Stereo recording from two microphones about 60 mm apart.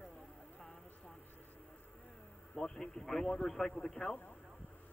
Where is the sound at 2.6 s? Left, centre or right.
Centre.